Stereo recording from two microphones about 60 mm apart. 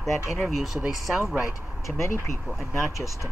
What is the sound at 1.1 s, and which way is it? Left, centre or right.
Speech, centre.